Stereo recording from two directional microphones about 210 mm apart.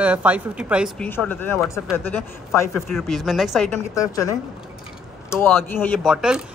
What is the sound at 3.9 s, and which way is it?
Speech, 15° left (ahead or behind).